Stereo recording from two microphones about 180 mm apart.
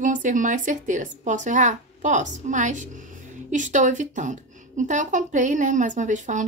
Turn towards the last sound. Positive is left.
turn(degrees=-45)  # may be behind; listen again after turning